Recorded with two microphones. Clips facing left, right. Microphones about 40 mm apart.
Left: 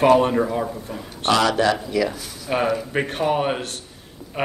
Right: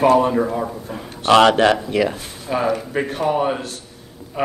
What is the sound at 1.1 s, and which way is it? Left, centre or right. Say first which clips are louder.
A man's voice: right 6 dB; right.